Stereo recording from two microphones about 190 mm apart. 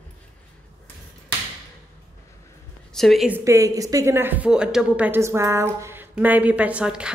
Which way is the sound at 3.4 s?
15° right (ahead or behind).